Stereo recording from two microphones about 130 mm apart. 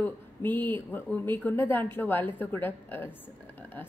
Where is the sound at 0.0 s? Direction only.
15° left (ahead or behind).